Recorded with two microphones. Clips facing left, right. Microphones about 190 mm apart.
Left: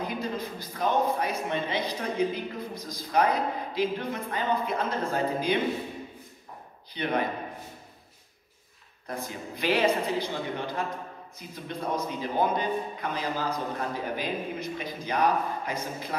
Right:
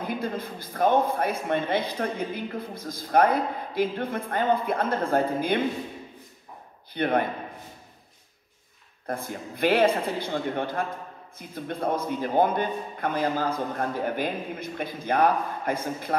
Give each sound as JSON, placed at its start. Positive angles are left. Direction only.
{"t": 0.0, "sound": "a man's voice", "side_deg": -55}
{"t": 6.9, "sound": "a man's voice", "side_deg": -55}
{"t": 9.0, "sound": "a man's voice", "side_deg": -55}